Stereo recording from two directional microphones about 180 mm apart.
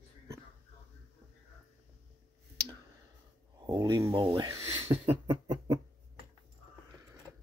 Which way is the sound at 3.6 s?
25° right (ahead or behind).